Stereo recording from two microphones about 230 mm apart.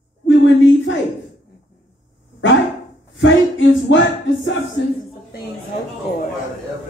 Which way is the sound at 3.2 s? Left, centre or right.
Left.